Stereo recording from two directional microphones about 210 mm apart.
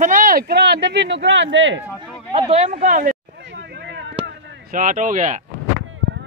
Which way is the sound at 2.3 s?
30° right (ahead or behind).